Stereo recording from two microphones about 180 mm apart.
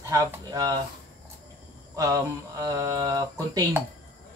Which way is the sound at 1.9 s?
20° right (ahead or behind).